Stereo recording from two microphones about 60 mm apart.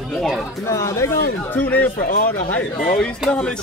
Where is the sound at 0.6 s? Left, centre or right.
Left.